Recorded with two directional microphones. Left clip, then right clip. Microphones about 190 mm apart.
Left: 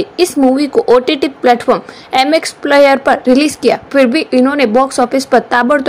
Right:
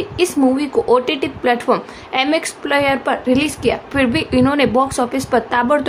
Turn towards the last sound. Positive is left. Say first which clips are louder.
# left 5 dB
turn(degrees=20)  # may be behind; listen again after turning